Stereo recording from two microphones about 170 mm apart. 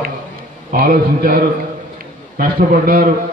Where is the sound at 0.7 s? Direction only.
55° right (ahead or behind).